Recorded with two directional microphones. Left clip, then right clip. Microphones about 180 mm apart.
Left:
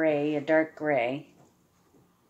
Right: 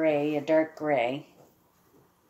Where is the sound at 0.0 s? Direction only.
5° right (ahead or behind).